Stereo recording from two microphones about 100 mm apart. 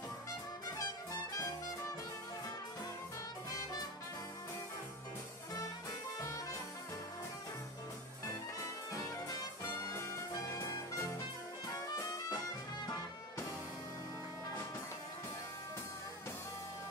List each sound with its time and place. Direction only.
9.6 s music: 30° left (ahead or behind)